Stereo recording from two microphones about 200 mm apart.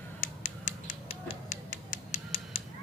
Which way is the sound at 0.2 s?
40° left (ahead or behind).